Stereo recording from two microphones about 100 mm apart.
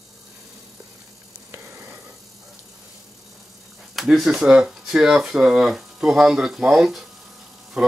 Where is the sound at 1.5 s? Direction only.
25° right (ahead or behind).